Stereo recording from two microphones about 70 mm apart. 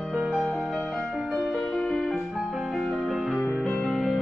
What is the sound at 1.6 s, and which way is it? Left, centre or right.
Music, centre.